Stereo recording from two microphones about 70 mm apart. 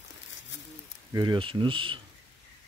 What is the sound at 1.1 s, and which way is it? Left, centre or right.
Speech, right.